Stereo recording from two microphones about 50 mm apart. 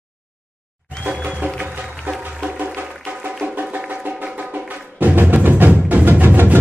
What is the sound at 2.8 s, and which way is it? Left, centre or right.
Music, right.